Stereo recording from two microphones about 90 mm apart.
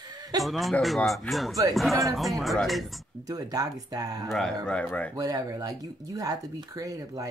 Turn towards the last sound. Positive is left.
turn(degrees=-40)  # may be behind; listen again after turning